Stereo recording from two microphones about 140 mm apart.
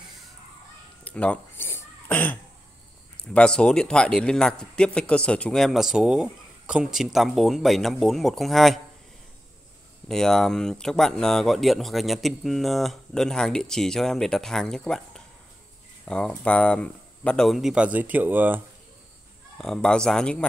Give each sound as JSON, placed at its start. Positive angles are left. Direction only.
{"t": 1.0, "sound": "a sound", "side_deg": 10}
{"t": 3.3, "sound": "speech", "side_deg": 5}
{"t": 10.0, "sound": "speech", "side_deg": 5}
{"t": 19.6, "sound": "speech", "side_deg": 5}